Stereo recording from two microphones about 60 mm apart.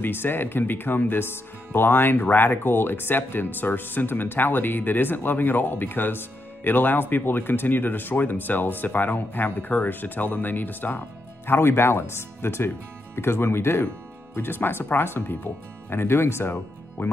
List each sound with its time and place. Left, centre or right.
0.0 s speech: left